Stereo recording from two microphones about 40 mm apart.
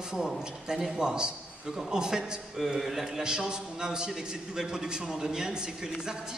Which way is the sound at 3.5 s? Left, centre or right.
Centre.